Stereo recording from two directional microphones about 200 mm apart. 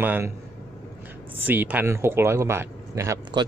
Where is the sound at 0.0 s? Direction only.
10° right (ahead or behind).